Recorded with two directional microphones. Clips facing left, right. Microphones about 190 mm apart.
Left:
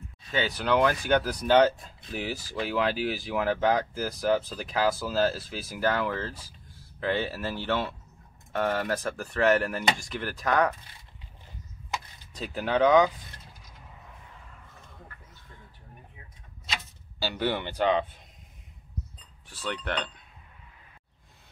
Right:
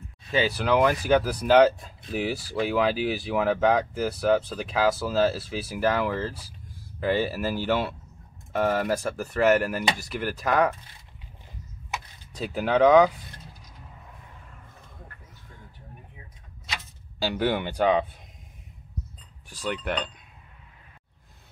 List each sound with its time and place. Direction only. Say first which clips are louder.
0.3 s speech: right 3 dB; 10° right (ahead or behind)
12.4 s speech: right 3 dB; 10° right (ahead or behind)
17.2 s speech: right 4 dB; 15° right (ahead or behind)
19.5 s speech: right 3 dB; 10° right (ahead or behind)